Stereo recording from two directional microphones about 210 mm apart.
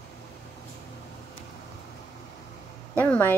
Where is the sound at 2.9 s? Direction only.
10° left (ahead or behind).